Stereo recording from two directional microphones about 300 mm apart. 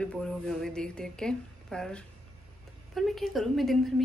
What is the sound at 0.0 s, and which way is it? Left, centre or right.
A woman's voice, centre.